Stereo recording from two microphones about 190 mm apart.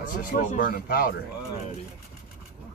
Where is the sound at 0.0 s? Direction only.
45° left (ahead or behind).